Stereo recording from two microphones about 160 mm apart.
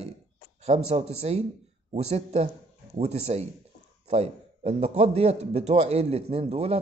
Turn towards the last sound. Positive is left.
turn(degrees=-40)  # may be behind; listen again after turning